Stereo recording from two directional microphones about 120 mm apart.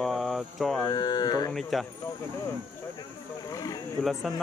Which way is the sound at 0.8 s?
35° left (ahead or behind).